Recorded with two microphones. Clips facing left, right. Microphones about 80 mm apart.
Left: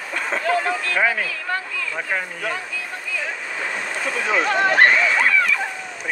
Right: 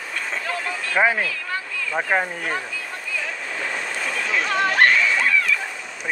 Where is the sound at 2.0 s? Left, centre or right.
Right.